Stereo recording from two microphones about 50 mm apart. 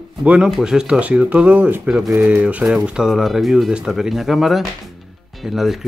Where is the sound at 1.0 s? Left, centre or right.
Right.